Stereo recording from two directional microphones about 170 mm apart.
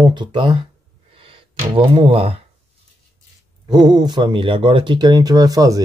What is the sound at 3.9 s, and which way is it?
Speech, 25° right (ahead or behind).